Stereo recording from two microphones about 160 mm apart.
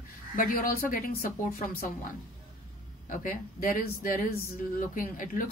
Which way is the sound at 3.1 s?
60° left (ahead or behind).